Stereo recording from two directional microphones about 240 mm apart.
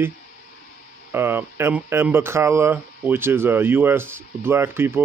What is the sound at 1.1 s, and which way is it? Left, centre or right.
Speech, centre.